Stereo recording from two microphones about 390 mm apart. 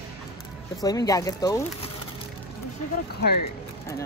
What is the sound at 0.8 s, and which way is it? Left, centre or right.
Speech, centre.